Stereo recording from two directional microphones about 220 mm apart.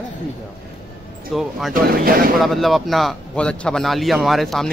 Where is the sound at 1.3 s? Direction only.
Centre (ahead or behind).